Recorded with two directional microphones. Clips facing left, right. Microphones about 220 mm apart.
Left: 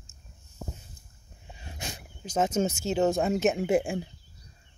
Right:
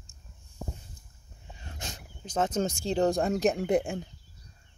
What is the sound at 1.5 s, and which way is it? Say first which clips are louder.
Speech: left 2 dB; 10° left (ahead or behind).